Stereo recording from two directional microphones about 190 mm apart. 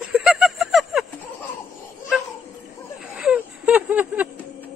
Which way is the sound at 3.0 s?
5° right (ahead or behind).